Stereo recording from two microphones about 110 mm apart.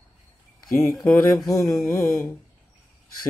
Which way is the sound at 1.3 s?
30° left (ahead or behind).